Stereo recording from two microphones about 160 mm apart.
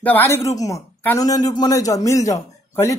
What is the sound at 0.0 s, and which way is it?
A woman's voice, 15° left (ahead or behind).